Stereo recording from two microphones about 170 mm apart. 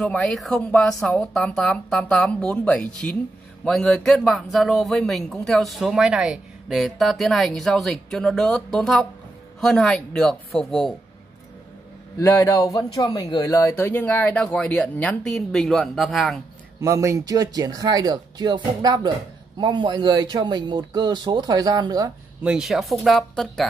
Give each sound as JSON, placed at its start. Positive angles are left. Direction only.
{"t": 0.0, "sound": "speech", "side_deg": 5}
{"t": 12.2, "sound": "speech", "side_deg": 15}
{"t": 16.8, "sound": "speech", "side_deg": -15}
{"t": 22.4, "sound": "speech", "side_deg": -5}